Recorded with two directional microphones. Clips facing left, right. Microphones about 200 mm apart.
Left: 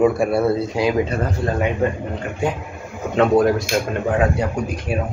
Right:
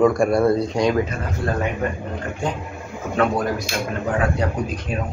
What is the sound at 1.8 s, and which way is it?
Speech, 25° left (ahead or behind).